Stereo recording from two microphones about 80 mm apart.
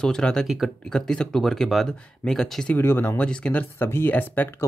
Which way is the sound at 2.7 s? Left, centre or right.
Left.